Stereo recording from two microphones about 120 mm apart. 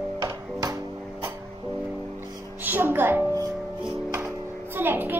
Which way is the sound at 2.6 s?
15° right (ahead or behind).